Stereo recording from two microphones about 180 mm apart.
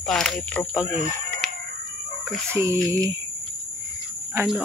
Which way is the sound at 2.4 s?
15° right (ahead or behind).